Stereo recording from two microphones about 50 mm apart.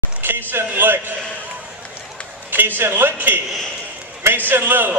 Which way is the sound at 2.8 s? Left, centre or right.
Right.